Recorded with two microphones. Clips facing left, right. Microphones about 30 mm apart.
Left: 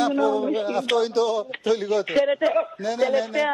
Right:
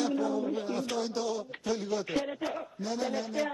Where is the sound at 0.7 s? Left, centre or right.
Left.